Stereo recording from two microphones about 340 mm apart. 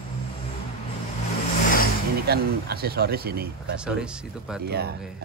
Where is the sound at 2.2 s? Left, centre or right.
Right.